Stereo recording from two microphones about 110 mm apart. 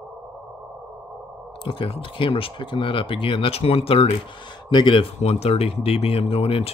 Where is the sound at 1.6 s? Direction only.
55° left (ahead or behind).